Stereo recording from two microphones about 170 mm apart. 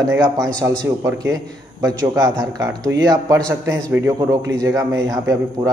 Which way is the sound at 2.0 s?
20° right (ahead or behind).